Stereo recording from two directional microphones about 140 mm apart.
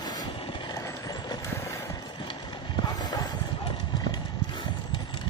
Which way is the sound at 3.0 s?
30° left (ahead or behind).